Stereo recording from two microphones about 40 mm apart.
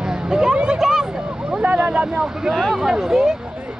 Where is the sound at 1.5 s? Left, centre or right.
Right.